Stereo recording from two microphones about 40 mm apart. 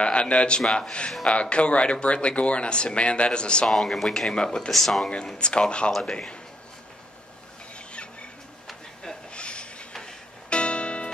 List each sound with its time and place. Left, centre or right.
0.0 s speech: left
3.6 s speech: centre
4.6 s speech: centre
5.0 s speech: left
5.9 s speech: centre
9.3 s a sound: left
10.5 s music: left